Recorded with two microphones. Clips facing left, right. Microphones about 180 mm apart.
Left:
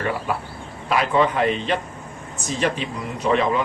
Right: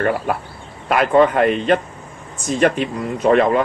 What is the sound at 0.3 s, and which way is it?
Speech, 55° right (ahead or behind).